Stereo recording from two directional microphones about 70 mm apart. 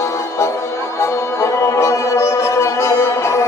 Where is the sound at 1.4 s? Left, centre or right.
Left.